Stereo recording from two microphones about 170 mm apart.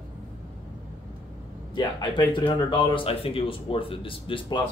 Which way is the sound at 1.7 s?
25° left (ahead or behind).